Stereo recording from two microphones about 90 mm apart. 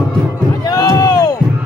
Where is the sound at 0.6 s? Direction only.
40° left (ahead or behind).